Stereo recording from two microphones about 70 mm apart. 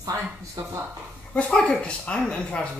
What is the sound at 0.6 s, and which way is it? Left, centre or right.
Speech, right.